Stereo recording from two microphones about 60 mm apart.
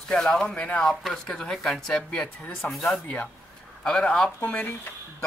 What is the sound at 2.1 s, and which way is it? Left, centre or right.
Speech, left.